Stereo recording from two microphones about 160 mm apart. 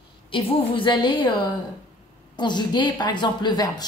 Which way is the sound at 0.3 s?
30° left (ahead or behind).